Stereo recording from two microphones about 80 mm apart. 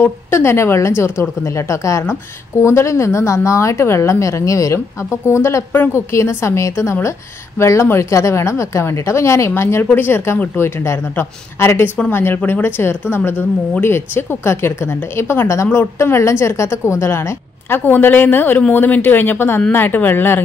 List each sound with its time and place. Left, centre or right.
0.0 s a woman's voice: left